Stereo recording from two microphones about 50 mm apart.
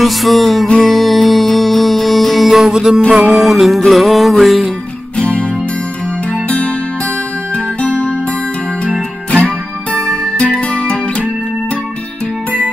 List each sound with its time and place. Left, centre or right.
0.0 s music: centre
5.1 s music: left
7.5 s music: left
10.0 s music: centre